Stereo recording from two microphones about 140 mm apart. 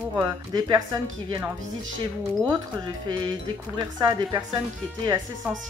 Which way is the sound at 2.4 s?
30° right (ahead or behind).